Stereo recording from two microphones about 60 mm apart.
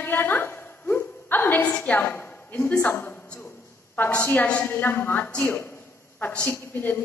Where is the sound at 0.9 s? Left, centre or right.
Left.